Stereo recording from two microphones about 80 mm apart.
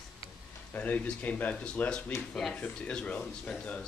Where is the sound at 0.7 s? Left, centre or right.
Centre.